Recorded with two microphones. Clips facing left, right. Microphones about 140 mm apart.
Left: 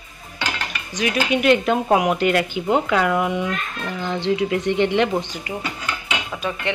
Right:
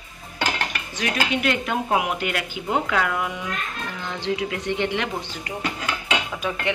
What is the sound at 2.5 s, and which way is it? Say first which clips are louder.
Speech: left 5 dB; 25° left (ahead or behind).